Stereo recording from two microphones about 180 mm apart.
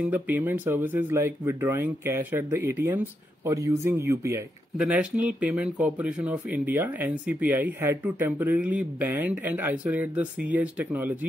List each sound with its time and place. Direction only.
0.0 s speech: 10° right (ahead or behind)